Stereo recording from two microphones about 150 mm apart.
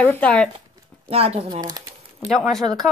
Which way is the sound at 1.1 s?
40° right (ahead or behind).